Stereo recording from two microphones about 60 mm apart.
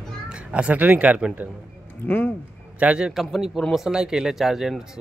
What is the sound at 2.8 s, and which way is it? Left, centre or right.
Speech, centre.